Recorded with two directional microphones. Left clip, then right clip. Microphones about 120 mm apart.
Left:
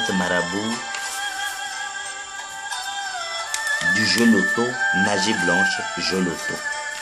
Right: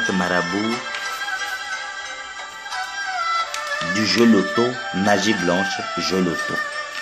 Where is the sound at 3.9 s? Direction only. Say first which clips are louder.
Even; 15° right (ahead or behind).